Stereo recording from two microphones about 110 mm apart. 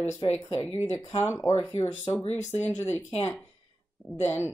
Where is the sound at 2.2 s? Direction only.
90° left.